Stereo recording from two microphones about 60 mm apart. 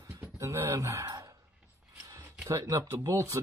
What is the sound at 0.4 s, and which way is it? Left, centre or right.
Speech, right.